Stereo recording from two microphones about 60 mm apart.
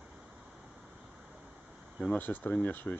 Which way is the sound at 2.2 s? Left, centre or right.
Left.